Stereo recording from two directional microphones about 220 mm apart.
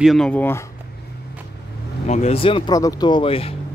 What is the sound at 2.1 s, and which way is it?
Speech, 30° left (ahead or behind).